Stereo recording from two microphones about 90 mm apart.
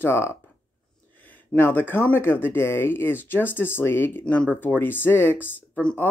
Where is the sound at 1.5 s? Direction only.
20° left (ahead or behind).